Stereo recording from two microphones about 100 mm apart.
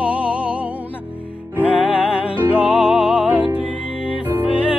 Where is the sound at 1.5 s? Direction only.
10° right (ahead or behind).